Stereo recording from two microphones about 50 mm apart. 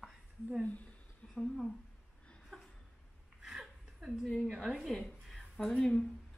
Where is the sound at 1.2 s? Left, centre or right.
Centre.